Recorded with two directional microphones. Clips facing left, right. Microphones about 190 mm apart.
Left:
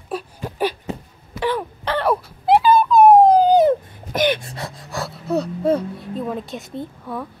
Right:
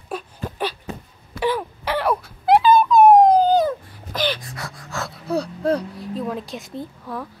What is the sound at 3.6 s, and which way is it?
Dog, 20° left (ahead or behind).